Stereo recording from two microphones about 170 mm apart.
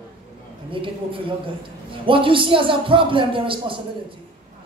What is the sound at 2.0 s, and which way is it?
A woman's voice, 30° right (ahead or behind).